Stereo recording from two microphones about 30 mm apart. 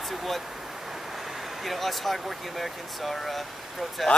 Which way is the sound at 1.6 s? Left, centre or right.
Centre.